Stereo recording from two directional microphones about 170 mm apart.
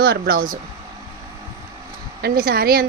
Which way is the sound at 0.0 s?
65° right (ahead or behind).